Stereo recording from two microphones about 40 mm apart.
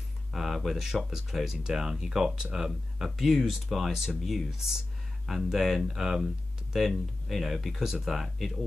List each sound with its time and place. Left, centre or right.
0.3 s speech: centre
3.2 s speech: centre